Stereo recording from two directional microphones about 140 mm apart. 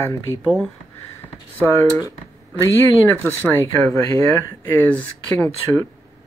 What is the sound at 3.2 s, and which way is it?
Speech, 15° left (ahead or behind).